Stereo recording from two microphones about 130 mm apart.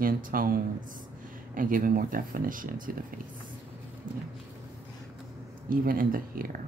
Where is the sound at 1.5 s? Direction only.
90° right.